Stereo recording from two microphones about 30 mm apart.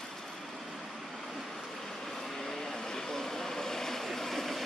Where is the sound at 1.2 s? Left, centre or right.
Centre.